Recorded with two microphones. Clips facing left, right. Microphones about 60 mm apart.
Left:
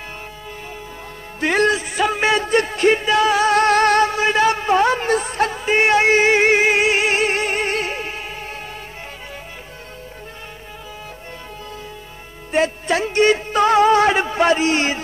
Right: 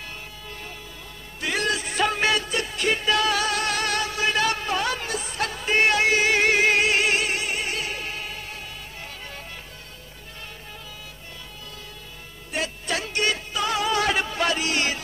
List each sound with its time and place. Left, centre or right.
1.4 s music: left
1.9 s music: centre
2.4 s music: left
3.5 s a sound: left
5.1 s music: left
5.4 s music: left
7.9 s music: left
12.5 s music: left
13.5 s music: left